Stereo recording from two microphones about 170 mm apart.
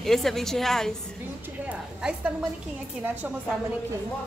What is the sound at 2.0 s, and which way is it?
Speech, 5° right (ahead or behind).